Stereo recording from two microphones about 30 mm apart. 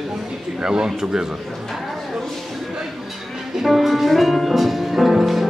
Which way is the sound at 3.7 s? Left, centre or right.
Centre.